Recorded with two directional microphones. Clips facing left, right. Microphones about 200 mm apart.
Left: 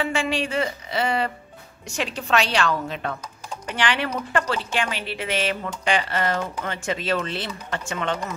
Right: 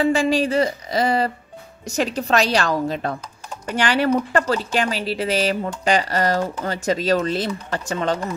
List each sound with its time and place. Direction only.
0.0 s a woman's voice: 40° right (ahead or behind)